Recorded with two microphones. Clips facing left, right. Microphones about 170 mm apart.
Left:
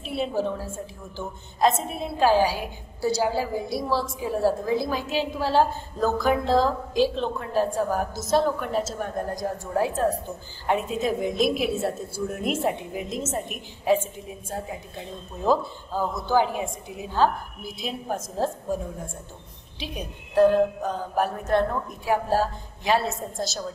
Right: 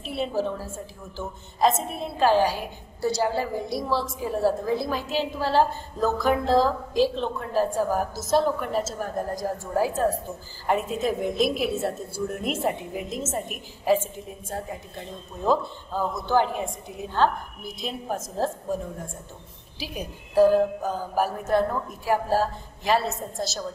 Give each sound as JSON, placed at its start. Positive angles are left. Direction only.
{"t": 0.0, "sound": "a woman's voice", "side_deg": 0}